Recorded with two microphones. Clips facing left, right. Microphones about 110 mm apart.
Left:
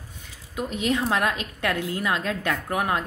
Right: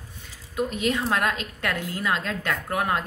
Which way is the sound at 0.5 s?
10° left (ahead or behind).